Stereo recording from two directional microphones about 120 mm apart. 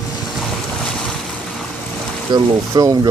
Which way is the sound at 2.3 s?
30° right (ahead or behind).